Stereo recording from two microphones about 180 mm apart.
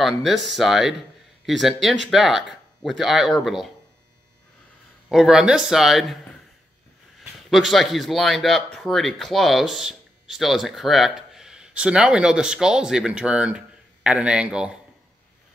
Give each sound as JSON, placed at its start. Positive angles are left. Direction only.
{"t": 0.0, "sound": "speech", "side_deg": 0}
{"t": 5.1, "sound": "speech", "side_deg": 0}
{"t": 7.2, "sound": "speech", "side_deg": 0}